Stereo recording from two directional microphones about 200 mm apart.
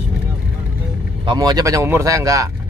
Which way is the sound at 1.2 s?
20° right (ahead or behind).